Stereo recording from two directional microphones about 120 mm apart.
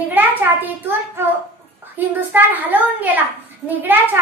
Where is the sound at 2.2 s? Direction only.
15° right (ahead or behind).